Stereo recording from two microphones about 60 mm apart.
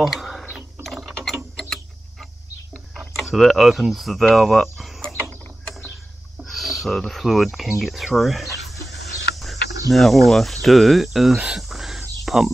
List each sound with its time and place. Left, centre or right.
0.0 s a sound: centre
0.8 s mechanisms: centre
1.6 s clock: centre
3.2 s speech: centre
6.4 s a sound: centre
7.0 s speech: centre
8.8 s chicken: centre
9.8 s speech: centre
11.3 s speech: centre
11.7 s whispering: centre
12.3 s speech: centre